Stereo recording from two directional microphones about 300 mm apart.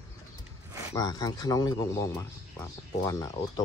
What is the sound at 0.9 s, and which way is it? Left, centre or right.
A man's voice, centre.